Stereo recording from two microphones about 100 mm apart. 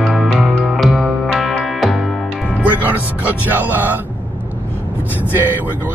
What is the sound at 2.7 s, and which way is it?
Music, 15° right (ahead or behind).